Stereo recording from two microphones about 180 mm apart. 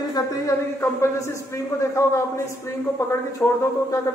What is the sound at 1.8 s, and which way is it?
Speech, 15° left (ahead or behind).